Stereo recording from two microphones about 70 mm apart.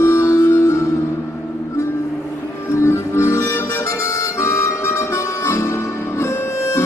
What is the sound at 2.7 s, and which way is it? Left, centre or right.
Harmonica, left.